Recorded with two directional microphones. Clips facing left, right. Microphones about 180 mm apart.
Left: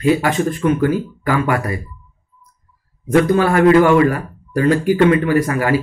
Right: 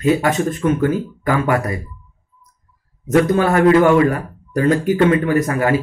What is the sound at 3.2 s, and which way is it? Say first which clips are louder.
Speech: left 2 dB; 25° right (ahead or behind).